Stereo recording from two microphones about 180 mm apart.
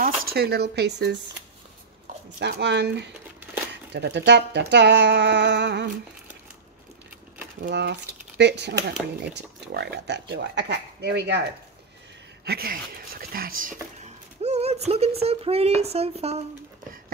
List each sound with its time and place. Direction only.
0.2 s speech: 60° right (ahead or behind)
2.4 s speech: 70° right (ahead or behind)
7.7 s speech: 70° right (ahead or behind)
12.4 s speech: 55° right (ahead or behind); by 16.4 s 35° right (ahead or behind)